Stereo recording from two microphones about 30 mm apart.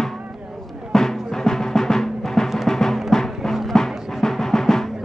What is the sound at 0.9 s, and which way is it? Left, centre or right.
Music, centre.